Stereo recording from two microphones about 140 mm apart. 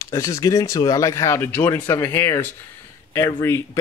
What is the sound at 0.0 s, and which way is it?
Speech, 20° left (ahead or behind).